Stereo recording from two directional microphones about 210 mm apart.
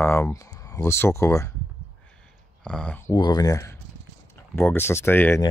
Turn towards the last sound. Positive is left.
turn(degrees=10)  # may be behind; listen again after turning